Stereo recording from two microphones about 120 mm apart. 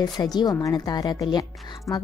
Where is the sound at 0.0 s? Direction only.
35° left (ahead or behind).